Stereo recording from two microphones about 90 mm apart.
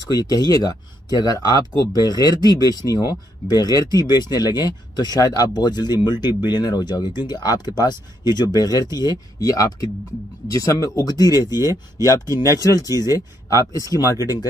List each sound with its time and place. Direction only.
0.0 s speech: 45° left (ahead or behind)
12.3 s speech: 35° right (ahead or behind)
12.5 s speech: 45° left (ahead or behind)